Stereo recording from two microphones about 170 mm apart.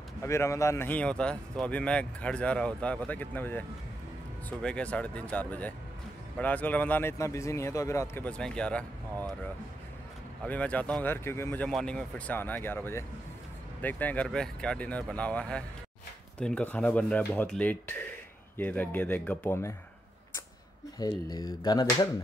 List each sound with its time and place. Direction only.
0.2 s a man's voice: 15° left (ahead or behind)
10.4 s a man's voice: 10° left (ahead or behind)
21.3 s speech: 25° left (ahead or behind)